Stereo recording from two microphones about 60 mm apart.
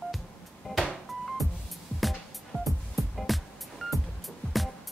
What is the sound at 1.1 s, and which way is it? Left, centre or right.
Music, centre.